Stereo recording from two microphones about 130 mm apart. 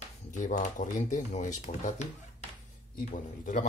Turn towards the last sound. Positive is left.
turn(degrees=90)